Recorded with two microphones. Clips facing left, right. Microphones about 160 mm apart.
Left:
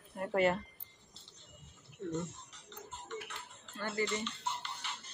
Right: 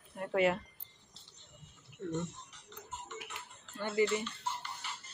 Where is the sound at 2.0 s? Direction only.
5° left (ahead or behind).